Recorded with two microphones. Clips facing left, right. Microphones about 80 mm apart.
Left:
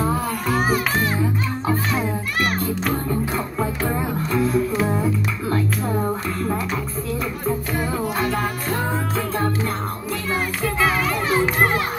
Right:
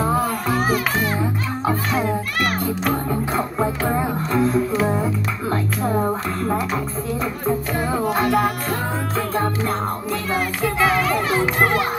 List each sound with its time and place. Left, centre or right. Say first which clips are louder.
3.3 s music: right 3 dB; right
7.9 s music: right 5 dB; right
10.3 s children playing: right 1 dB; centre